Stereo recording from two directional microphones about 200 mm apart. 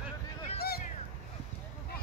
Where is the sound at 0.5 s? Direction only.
50° left (ahead or behind).